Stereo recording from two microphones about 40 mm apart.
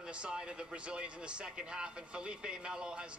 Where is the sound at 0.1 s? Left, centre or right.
Right.